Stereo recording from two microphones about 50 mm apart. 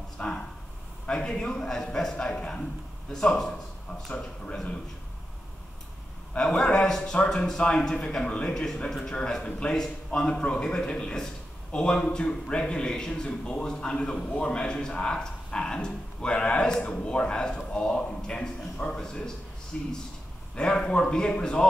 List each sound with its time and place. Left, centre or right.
0.2 s a man's voice: centre
6.3 s a man's voice: centre